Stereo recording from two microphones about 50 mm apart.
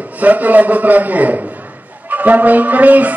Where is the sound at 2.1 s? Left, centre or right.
Right.